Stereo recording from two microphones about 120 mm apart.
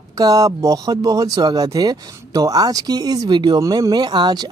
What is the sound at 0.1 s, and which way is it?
Speech, 30° right (ahead or behind).